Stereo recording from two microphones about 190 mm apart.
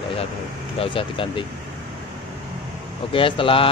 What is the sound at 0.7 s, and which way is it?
Speech, 25° left (ahead or behind).